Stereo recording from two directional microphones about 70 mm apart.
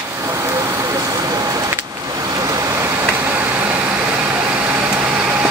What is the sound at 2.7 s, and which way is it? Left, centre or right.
Vehicle, right.